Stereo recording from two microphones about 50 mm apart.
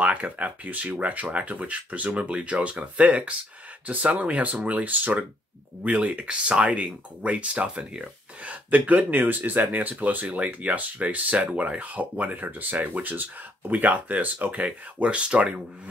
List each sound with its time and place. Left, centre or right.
0.0 s speech: right